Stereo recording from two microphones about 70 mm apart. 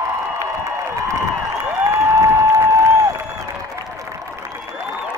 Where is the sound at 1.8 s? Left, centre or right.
Right.